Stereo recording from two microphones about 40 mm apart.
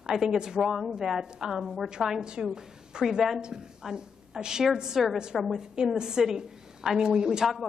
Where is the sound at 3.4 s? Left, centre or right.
Centre.